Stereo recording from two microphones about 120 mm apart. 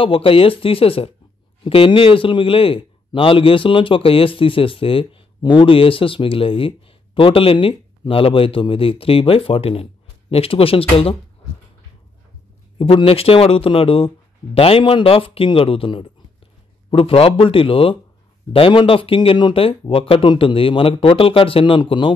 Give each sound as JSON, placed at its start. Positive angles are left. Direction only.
{"t": 0.0, "sound": "speech", "side_deg": 50}
{"t": 12.7, "sound": "speech", "side_deg": 50}